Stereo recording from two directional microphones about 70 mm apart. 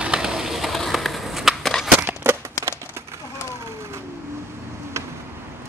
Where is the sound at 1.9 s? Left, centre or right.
Right.